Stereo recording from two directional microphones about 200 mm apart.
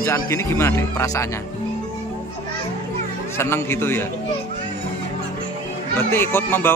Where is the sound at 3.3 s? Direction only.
10° left (ahead or behind).